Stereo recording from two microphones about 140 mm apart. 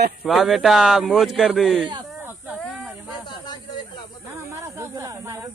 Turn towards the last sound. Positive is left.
turn(degrees=-15)  # may be behind; listen again after turning